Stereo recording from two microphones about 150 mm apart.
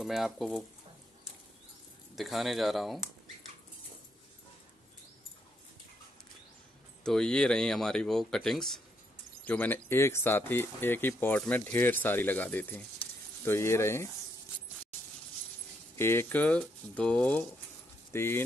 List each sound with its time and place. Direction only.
0.0 s speech: centre (ahead or behind)
2.1 s speech: centre (ahead or behind)
7.0 s speech: 5° left (ahead or behind)
16.0 s speech: 15° left (ahead or behind)